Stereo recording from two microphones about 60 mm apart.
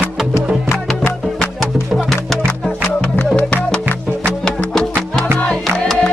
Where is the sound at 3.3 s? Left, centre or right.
Centre.